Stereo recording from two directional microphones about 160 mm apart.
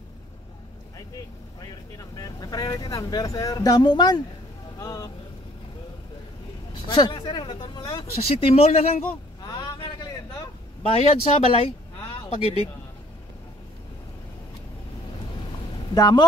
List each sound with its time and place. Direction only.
1.6 s speech: 20° left (ahead or behind)
6.7 s speech: 30° left (ahead or behind)
8.0 s speech: 35° left (ahead or behind)
9.4 s vehicle: 25° left (ahead or behind)
10.8 s speech: 35° left (ahead or behind)
15.9 s speech: 25° left (ahead or behind)